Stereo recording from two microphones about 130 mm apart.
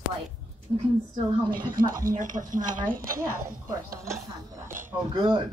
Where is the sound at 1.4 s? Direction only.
90° right.